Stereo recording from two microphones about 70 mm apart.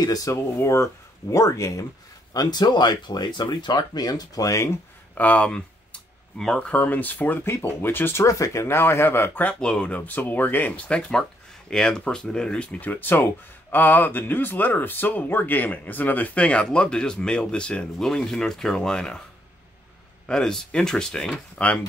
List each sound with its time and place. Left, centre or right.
0.0 s speech: left
0.3 s speech: left
2.3 s speech: left
5.1 s speech: left
8.2 s speech: left
9.6 s speech: centre
10.9 s speech: centre
12.8 s speech: left
20.2 s speech: centre